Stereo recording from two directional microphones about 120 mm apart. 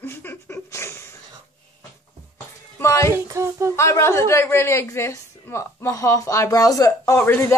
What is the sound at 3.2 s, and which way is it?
Child singing, 25° right (ahead or behind).